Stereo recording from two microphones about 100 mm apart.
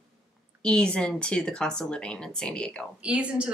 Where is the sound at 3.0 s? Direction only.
10° right (ahead or behind).